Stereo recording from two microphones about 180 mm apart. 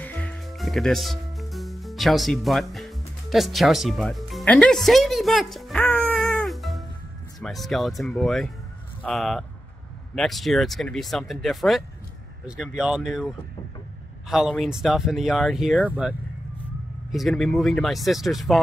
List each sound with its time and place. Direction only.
0.0 s music: 10° left (ahead or behind)
7.3 s speech: centre (ahead or behind)
14.3 s speech: centre (ahead or behind)
17.1 s speech: centre (ahead or behind)